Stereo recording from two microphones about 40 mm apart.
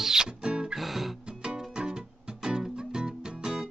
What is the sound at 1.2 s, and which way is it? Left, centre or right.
Music, right.